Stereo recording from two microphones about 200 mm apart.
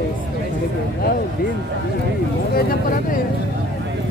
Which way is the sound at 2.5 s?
45° left (ahead or behind).